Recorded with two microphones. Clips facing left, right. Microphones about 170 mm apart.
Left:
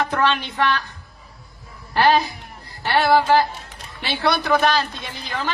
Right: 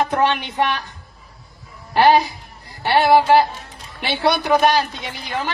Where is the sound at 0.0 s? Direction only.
15° right (ahead or behind).